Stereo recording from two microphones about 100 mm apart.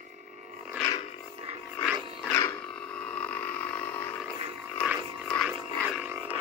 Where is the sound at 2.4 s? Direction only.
15° left (ahead or behind).